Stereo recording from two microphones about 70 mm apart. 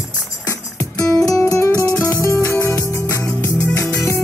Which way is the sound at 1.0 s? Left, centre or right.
Left.